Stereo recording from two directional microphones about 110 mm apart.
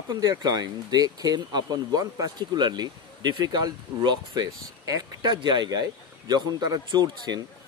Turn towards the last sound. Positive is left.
turn(degrees=-40)  # may be behind; listen again after turning